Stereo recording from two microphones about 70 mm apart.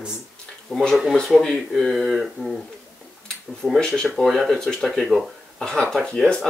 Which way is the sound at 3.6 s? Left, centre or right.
Centre.